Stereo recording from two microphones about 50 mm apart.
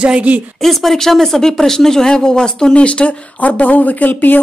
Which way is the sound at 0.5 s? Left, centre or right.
Centre.